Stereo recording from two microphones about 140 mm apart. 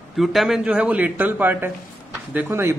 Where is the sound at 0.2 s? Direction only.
Centre (ahead or behind).